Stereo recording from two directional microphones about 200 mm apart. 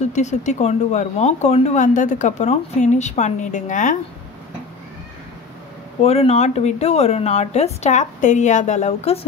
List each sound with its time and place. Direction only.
0.1 s speech: 35° left (ahead or behind)
6.0 s speech: 30° left (ahead or behind)